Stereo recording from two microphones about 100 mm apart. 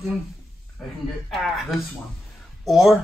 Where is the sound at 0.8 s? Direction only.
Centre (ahead or behind).